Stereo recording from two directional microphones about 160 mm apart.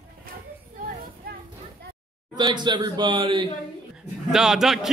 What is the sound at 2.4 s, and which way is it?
Speech, 25° right (ahead or behind).